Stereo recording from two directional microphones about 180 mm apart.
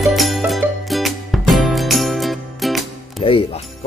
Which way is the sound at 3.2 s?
30° left (ahead or behind).